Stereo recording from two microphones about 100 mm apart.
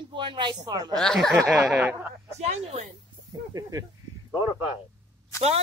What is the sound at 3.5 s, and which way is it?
Speech, 35° right (ahead or behind).